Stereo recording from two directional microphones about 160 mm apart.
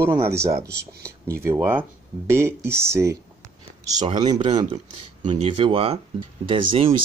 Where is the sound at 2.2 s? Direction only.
15° right (ahead or behind).